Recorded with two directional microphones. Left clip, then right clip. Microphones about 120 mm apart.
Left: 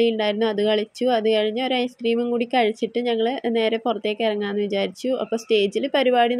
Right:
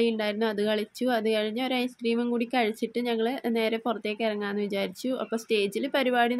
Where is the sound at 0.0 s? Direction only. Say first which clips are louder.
Left 6 dB; 25° left (ahead or behind).